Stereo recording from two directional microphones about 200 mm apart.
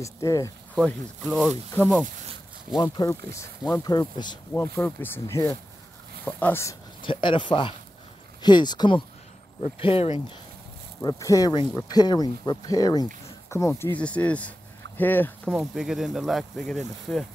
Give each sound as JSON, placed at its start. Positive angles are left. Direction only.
{"t": 0.0, "sound": "speech", "side_deg": 15}
{"t": 0.7, "sound": "speech", "side_deg": 0}
{"t": 2.8, "sound": "speech", "side_deg": 20}
{"t": 4.6, "sound": "speech", "side_deg": 10}
{"t": 11.0, "sound": "speech", "side_deg": 15}
{"t": 15.5, "sound": "speech", "side_deg": 0}